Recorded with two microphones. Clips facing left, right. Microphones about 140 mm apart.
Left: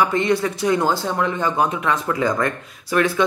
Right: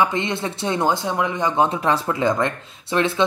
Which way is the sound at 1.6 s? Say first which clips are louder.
Right 1 dB; 30° right (ahead or behind).